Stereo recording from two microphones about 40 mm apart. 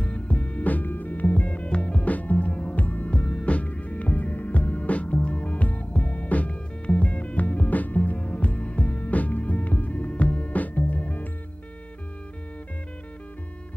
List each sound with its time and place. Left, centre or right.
0.0 s music: left
2.1 s music: left
3.2 s music: left
3.5 s music: left